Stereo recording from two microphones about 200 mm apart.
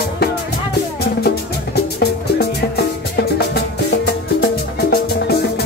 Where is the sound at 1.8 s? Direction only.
55° left (ahead or behind).